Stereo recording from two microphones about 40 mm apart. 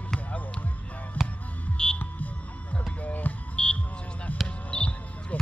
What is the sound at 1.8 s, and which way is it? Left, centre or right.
Music, centre.